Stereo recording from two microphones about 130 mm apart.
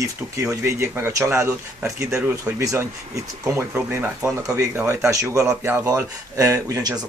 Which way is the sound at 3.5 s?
15° right (ahead or behind).